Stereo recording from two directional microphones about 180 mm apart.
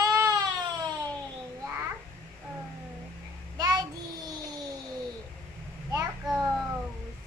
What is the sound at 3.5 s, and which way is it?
Child singing, 20° right (ahead or behind).